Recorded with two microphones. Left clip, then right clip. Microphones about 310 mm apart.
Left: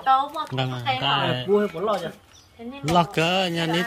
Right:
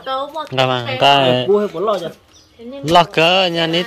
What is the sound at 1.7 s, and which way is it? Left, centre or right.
Speech, right.